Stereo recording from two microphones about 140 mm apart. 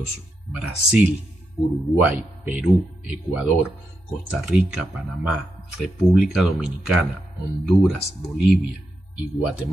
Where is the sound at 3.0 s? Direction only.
10° right (ahead or behind).